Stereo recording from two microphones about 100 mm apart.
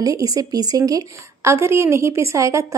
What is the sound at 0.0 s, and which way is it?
Speech, 35° right (ahead or behind).